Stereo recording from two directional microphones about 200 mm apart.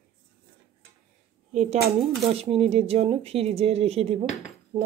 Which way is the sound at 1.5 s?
35° right (ahead or behind).